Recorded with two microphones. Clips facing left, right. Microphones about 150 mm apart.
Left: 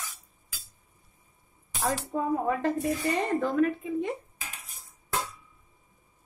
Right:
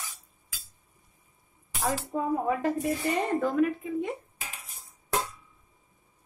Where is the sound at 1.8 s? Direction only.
5° right (ahead or behind).